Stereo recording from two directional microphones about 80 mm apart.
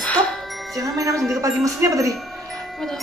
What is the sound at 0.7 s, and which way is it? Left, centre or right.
Music, right.